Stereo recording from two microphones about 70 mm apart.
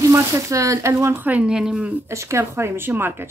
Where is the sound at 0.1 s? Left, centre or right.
Right.